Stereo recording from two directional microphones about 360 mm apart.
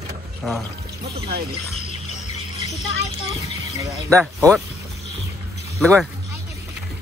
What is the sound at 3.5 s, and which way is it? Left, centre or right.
Music, centre.